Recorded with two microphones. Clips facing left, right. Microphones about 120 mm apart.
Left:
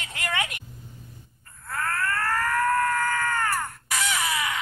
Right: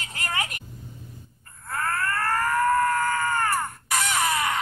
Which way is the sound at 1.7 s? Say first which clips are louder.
Right 1 dB; 20° right (ahead or behind).